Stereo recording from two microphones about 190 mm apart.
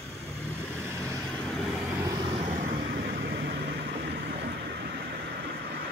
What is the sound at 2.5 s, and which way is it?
Vehicle, 40° right (ahead or behind).